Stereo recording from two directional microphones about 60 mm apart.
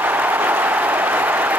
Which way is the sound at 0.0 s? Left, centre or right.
Right.